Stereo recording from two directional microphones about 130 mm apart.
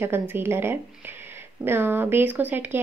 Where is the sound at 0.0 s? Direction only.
15° right (ahead or behind).